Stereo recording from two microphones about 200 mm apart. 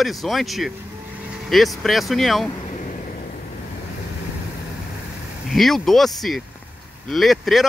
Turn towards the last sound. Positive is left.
turn(degrees=0)  # may be behind; listen again after turning